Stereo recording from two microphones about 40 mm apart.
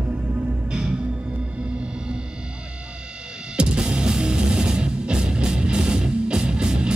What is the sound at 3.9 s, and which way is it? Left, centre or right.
Music, right.